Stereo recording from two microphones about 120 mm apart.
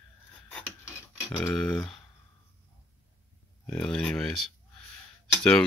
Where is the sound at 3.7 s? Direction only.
10° left (ahead or behind).